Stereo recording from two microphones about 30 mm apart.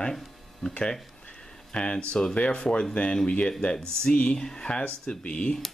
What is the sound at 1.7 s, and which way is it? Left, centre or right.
Speech, left.